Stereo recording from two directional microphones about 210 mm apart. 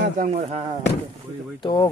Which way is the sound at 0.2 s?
30° right (ahead or behind).